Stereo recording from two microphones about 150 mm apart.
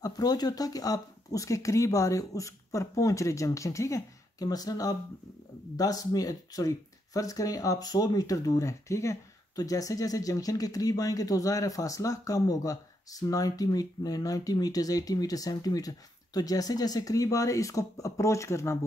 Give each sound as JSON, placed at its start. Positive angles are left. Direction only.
{"t": 0.0, "sound": "speech", "side_deg": 25}